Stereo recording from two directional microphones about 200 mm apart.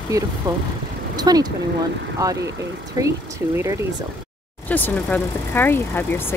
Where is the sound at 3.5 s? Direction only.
15° right (ahead or behind).